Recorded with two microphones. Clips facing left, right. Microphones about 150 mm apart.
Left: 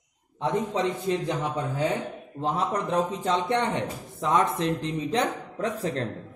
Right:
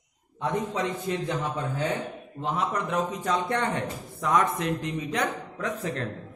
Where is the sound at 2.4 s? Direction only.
35° left (ahead or behind).